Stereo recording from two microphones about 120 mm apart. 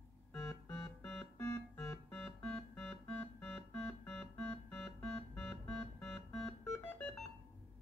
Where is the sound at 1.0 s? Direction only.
5° left (ahead or behind).